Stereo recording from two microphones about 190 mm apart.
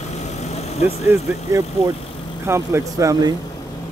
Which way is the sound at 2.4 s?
15° right (ahead or behind).